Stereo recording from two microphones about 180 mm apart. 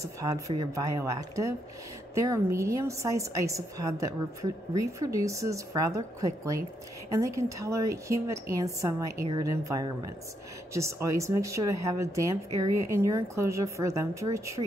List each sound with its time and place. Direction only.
0.0 s a woman's voice: 20° right (ahead or behind)